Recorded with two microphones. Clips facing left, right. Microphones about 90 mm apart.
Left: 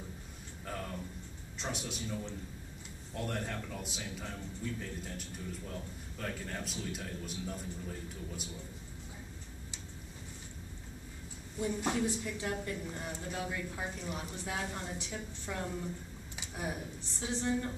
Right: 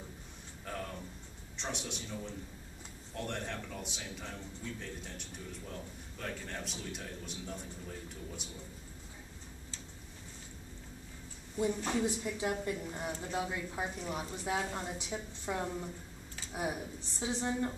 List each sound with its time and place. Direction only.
0.7 s music: centre (ahead or behind)
1.6 s a man's voice: centre (ahead or behind)
3.2 s a man's voice: centre (ahead or behind)
12.0 s a woman's voice: 20° right (ahead or behind)